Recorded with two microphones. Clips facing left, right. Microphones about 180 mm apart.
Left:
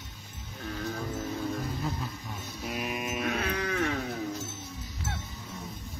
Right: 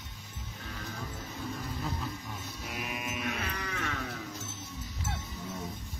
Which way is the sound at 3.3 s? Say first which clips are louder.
Left 6 dB; 55° left (ahead or behind).